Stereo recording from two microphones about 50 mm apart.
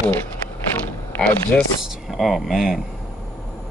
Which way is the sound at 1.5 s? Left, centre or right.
Left.